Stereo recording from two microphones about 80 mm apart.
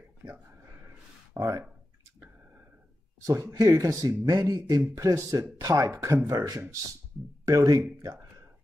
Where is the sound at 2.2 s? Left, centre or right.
Right.